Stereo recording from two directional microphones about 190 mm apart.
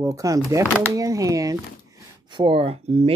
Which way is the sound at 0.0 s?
15° right (ahead or behind).